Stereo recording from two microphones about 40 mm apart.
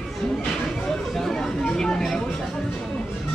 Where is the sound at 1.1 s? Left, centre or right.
Centre.